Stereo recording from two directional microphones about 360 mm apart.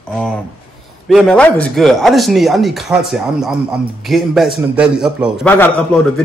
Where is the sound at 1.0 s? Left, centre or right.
Centre.